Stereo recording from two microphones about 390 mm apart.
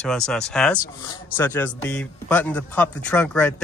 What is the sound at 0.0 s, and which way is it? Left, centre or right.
Speech, centre.